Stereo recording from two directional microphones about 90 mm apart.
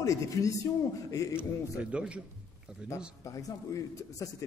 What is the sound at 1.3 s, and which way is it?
Speech, 15° right (ahead or behind).